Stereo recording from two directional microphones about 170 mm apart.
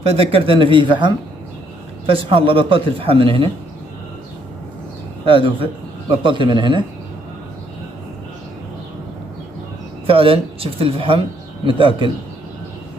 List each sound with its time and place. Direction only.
0.0 s speech: 35° right (ahead or behind)
5.2 s a man's voice: 30° right (ahead or behind)
10.0 s speech: 35° right (ahead or behind)